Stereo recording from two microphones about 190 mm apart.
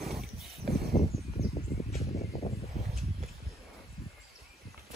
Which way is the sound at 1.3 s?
35° left (ahead or behind).